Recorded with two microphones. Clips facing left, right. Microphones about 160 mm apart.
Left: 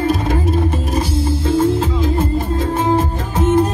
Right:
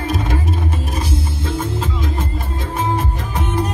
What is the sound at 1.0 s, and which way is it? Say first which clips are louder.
Music: left 6 dB; 30° left (ahead or behind).